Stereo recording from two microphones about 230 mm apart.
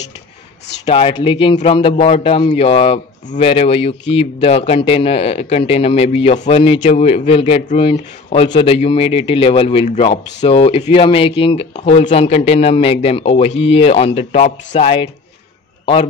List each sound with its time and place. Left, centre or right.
0.8 s a man's voice: left